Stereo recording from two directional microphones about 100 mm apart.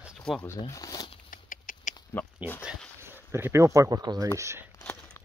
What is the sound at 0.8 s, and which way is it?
Speech, 40° left (ahead or behind).